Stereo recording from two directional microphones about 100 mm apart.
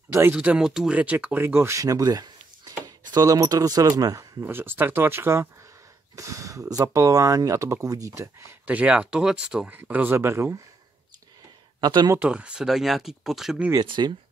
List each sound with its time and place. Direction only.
0.3 s speech: 10° right (ahead or behind); by 4.5 s 40° right (ahead or behind)
4.5 s speech: 20° right (ahead or behind)
8.6 s speech: 15° right (ahead or behind)
11.8 s speech: 45° right (ahead or behind)
12.2 s speech: 10° right (ahead or behind)
13.7 s speech: 50° right (ahead or behind)